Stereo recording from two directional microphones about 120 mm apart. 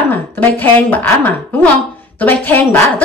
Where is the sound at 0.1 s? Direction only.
15° left (ahead or behind).